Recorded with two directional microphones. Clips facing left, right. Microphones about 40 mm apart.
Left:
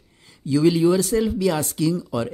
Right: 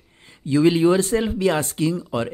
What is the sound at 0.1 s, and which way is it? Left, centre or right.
Speech, right.